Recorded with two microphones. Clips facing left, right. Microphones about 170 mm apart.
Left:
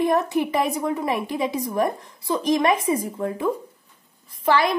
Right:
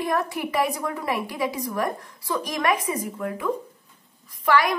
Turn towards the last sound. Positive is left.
turn(degrees=25)  # may be behind; listen again after turning